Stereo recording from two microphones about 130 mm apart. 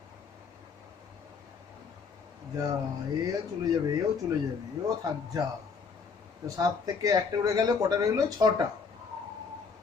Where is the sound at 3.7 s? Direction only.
25° right (ahead or behind).